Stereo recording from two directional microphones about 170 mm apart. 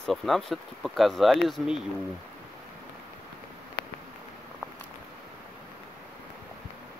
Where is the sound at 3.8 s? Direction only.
60° left (ahead or behind).